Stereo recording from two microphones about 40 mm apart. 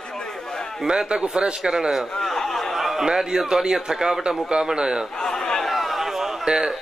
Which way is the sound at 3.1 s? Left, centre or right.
Centre.